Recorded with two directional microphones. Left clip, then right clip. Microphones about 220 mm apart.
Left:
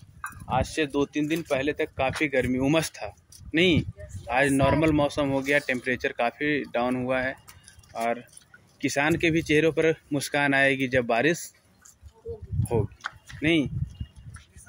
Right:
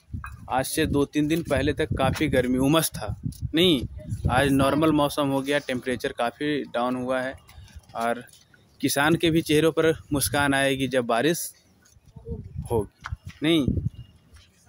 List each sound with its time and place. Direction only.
0.5 s speech: 25° right (ahead or behind)
13.4 s speech: 25° right (ahead or behind)